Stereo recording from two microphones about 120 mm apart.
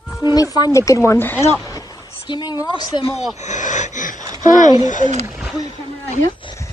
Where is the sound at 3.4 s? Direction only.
85° left.